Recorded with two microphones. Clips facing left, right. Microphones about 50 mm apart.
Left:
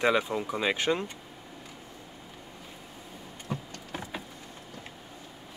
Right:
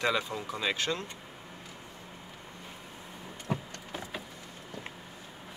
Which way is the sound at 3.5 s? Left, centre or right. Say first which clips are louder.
Right 2 dB; right.